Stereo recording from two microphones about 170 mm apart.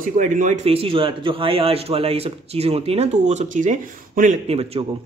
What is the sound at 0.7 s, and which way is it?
Speech, 35° right (ahead or behind).